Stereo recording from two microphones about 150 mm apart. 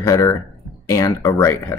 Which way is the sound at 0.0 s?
20° left (ahead or behind).